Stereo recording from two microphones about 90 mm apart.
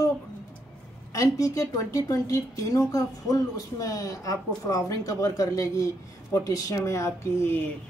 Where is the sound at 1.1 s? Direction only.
40° left (ahead or behind).